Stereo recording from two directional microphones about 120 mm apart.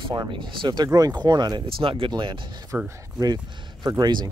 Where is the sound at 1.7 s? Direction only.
50° right (ahead or behind).